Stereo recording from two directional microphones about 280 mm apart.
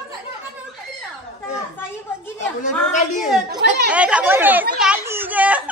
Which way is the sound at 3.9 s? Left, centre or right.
Centre.